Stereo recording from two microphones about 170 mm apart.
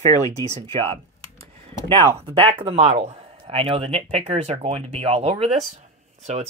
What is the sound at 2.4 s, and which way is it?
Speech, 35° right (ahead or behind).